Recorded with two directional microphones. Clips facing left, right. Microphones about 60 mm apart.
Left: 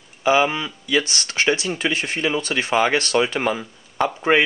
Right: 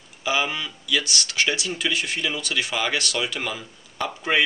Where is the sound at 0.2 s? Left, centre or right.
Left.